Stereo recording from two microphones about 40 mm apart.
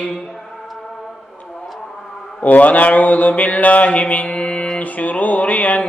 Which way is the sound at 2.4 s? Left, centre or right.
Left.